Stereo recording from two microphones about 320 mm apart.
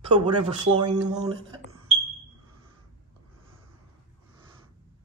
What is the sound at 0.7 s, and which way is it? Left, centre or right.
Speech, centre.